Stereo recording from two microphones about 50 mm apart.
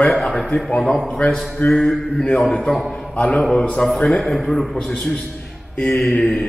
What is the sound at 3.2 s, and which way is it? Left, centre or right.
A man's voice, centre.